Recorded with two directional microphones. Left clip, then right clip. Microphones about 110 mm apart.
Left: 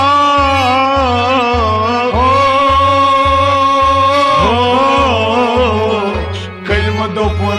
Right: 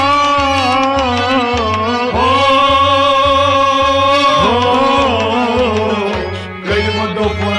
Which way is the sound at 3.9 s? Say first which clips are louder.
Left 1 dB; 20° left (ahead or behind).